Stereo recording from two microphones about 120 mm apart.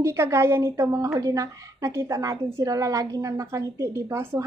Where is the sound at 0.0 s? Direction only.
20° right (ahead or behind).